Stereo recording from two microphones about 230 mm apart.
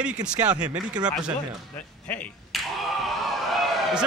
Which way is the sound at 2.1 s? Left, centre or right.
Centre.